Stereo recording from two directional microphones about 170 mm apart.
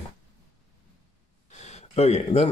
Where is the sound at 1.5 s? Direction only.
40° left (ahead or behind).